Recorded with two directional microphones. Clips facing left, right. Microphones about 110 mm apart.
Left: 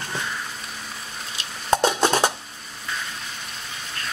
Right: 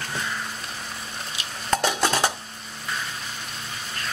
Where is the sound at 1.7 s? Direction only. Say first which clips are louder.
Left 4 dB; 25° left (ahead or behind).